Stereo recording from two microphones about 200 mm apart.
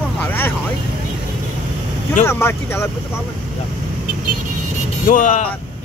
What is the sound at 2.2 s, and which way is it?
Speech, 10° left (ahead or behind).